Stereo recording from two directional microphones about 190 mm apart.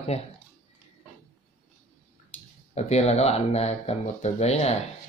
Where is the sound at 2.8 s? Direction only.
35° left (ahead or behind).